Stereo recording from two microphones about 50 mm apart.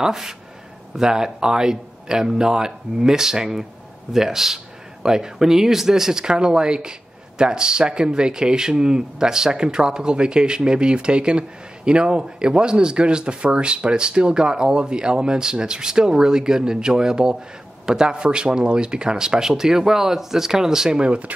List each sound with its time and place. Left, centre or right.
0.0 s speech: centre